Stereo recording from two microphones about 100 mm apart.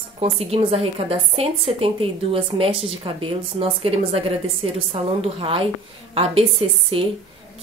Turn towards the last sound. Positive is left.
turn(degrees=-70)  # may be behind; listen again after turning